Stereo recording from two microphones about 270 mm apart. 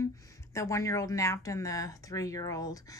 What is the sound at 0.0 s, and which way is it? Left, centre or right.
Speech, centre.